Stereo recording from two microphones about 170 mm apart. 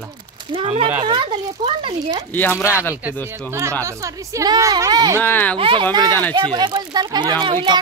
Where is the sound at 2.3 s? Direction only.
10° left (ahead or behind).